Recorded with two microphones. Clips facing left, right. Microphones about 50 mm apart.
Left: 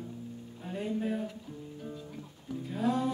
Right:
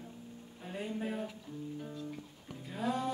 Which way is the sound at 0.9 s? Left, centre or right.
Centre.